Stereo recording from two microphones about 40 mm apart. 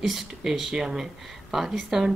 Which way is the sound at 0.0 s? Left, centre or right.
Centre.